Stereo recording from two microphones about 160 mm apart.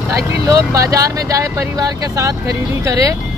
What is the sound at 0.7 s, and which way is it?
Speech, 20° right (ahead or behind).